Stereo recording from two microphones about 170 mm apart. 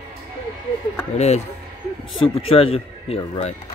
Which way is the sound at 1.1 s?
40° left (ahead or behind).